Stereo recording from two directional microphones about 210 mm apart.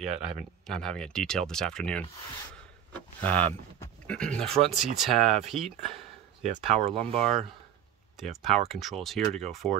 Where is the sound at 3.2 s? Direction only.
5° left (ahead or behind).